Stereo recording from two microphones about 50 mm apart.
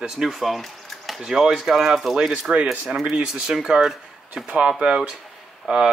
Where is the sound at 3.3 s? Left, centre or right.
Centre.